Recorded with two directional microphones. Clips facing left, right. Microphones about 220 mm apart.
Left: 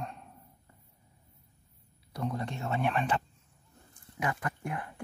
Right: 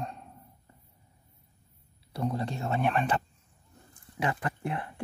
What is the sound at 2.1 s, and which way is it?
A man's voice, 30° right (ahead or behind).